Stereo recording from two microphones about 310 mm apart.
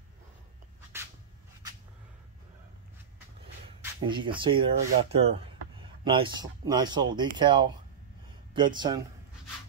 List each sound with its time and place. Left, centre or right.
4.0 s speech: centre